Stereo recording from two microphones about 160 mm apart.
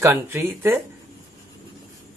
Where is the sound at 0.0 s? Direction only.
15° right (ahead or behind).